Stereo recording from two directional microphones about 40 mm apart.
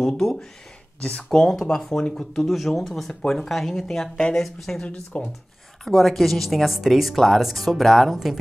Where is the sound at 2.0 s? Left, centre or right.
Left.